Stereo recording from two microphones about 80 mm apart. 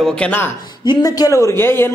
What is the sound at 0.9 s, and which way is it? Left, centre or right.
Speech, left.